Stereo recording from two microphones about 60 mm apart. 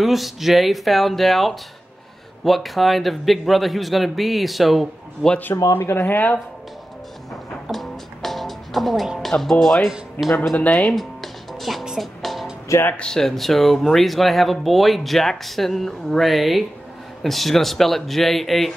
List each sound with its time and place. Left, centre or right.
0.0 s speech: centre
5.8 s speech: left
7.7 s music: centre
9.2 s speech: centre
10.2 s speech: left
10.7 s music: centre
12.9 s speech: centre